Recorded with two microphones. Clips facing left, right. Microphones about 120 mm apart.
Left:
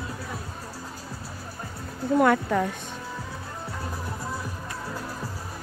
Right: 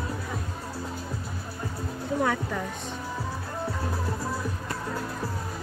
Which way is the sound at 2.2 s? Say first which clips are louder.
Left 7 dB; 60° left (ahead or behind).